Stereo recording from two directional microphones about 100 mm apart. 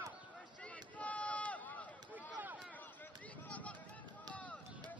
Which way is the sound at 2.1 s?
15° right (ahead or behind).